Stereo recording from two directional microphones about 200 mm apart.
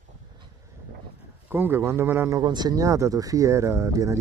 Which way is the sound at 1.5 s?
10° right (ahead or behind).